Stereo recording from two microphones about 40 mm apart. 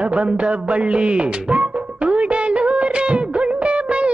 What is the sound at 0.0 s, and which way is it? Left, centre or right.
Music, right.